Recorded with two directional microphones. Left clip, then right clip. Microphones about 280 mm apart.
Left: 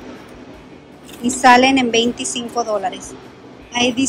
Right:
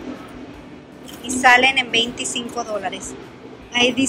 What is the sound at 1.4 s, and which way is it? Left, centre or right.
A woman's voice, centre.